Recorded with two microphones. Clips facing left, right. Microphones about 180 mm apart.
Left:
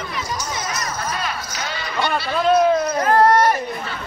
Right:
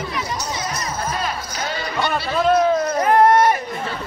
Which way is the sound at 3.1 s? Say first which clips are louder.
Right 1 dB; 15° right (ahead or behind).